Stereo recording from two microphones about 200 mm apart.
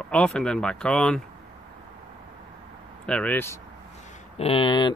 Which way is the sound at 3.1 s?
5° left (ahead or behind).